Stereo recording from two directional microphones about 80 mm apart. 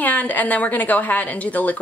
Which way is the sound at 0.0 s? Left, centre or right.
Left.